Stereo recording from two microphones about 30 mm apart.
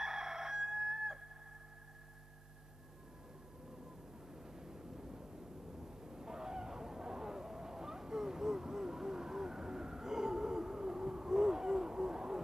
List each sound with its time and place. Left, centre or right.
0.0 s crowing: centre
4.3 s vehicle: centre